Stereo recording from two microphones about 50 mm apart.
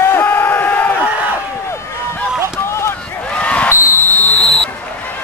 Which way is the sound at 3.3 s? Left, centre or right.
Left.